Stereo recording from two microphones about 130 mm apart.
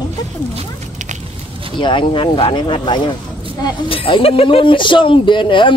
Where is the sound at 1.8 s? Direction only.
40° left (ahead or behind).